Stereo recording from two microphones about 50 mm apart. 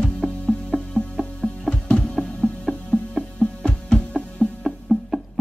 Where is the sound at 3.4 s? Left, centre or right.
Centre.